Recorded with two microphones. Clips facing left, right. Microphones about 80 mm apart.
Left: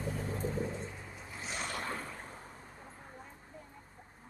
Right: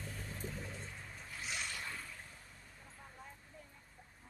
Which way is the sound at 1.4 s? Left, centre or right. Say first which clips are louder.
Left 6 dB; left.